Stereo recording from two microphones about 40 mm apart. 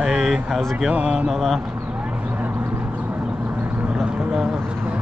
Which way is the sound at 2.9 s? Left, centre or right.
Right.